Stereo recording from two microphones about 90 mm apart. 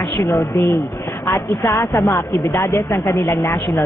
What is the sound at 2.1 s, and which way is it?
A woman's voice, 35° left (ahead or behind).